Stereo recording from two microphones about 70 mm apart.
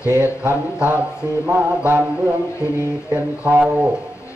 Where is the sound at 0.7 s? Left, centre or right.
Right.